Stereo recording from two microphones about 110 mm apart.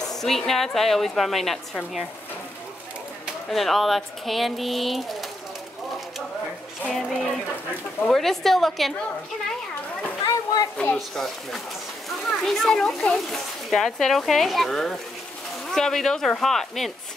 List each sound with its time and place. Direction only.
0.2 s speech: centre (ahead or behind)
3.4 s speech: centre (ahead or behind)
6.9 s speech: centre (ahead or behind)
10.2 s children playing: 35° left (ahead or behind)
11.0 s speech: 5° left (ahead or behind)